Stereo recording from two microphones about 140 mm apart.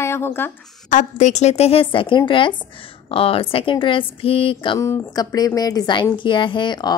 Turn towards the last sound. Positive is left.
turn(degrees=30)  # may be behind; listen again after turning